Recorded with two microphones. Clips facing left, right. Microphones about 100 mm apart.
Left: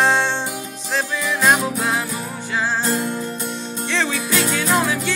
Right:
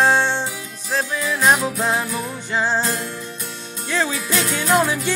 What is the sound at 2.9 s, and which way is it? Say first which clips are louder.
Music: left 4 dB; 15° left (ahead or behind).